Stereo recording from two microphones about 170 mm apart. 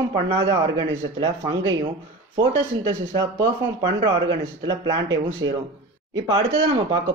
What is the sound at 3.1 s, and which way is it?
Speech, 25° right (ahead or behind).